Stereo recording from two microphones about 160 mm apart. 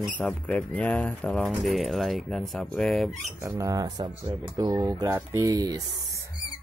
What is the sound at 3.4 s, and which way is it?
Speech, 20° right (ahead or behind).